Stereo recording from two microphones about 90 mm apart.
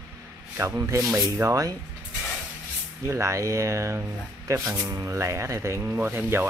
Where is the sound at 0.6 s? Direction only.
30° right (ahead or behind).